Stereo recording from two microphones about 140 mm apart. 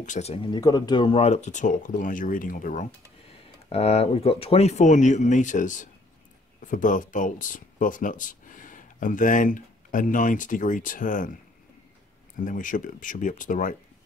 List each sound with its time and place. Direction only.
0.0 s speech: 65° left (ahead or behind)
0.3 s speech: 35° left (ahead or behind); by 2.9 s 65° left (ahead or behind)
3.6 s speech: 50° left (ahead or behind); by 11.3 s 70° left (ahead or behind)
12.4 s speech: 70° left (ahead or behind)